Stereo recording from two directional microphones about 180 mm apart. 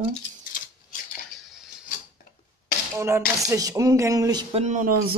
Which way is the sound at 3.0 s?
15° right (ahead or behind).